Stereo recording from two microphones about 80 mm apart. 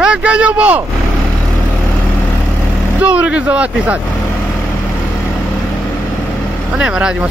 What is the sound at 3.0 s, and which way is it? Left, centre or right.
Speech, centre.